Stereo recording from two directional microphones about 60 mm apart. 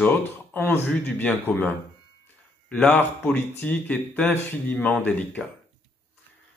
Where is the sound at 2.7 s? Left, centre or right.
Left.